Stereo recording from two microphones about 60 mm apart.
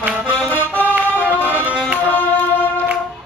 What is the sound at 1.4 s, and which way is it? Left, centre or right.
Music, right.